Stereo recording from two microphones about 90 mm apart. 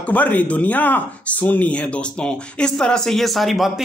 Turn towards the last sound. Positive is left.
turn(degrees=0)  # may be behind; listen again after turning